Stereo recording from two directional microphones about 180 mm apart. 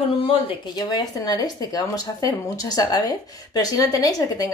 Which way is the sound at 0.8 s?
20° left (ahead or behind).